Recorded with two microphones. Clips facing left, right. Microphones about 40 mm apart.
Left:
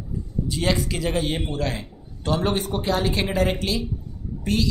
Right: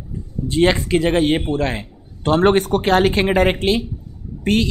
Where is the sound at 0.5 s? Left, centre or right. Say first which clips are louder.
Right 9 dB; right.